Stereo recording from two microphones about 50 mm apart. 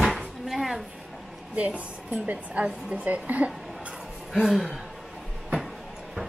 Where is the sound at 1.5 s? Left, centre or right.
Right.